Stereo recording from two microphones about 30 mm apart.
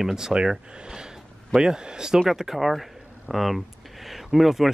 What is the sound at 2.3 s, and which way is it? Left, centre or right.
Speech, centre.